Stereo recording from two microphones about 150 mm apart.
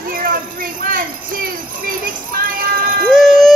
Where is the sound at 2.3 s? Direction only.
80° right.